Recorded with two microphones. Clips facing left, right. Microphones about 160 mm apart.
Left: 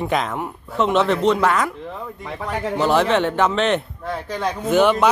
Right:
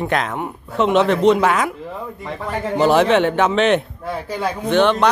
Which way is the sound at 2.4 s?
Centre (ahead or behind).